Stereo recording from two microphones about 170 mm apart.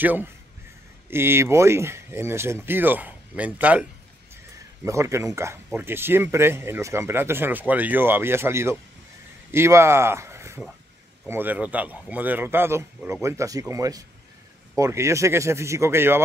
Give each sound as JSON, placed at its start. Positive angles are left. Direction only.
{"t": 0.0, "sound": "speech", "side_deg": -10}
{"t": 4.8, "sound": "speech", "side_deg": -15}